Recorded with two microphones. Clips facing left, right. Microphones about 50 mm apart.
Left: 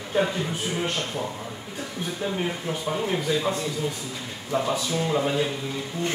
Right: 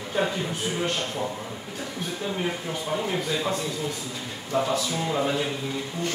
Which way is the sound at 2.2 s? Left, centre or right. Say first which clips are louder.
Left 1 dB; centre.